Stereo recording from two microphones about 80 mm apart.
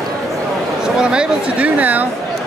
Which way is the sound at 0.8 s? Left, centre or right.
Centre.